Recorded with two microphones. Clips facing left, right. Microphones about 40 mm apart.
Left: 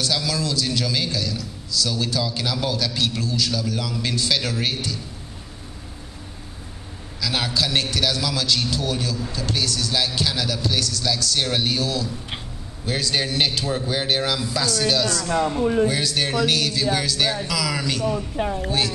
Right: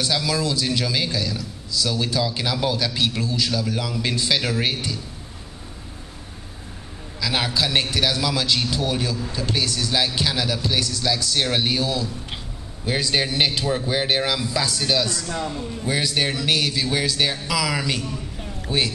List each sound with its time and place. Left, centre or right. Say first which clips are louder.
0.0 s a man's voice: right 1 dB; centre
7.2 s a man's voice: right 1 dB; centre
15.2 s speech: left 6 dB; centre
15.6 s a man's voice: left 12 dB; left
15.9 s a man's voice: even; centre
18.1 s a man's voice: left 9 dB; left